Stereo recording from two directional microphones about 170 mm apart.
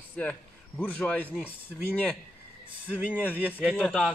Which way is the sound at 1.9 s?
10° left (ahead or behind).